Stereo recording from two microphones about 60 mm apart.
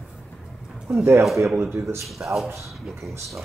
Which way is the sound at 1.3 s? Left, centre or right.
Right.